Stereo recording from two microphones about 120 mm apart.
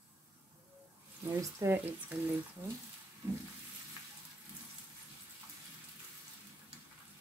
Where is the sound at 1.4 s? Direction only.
25° right (ahead or behind).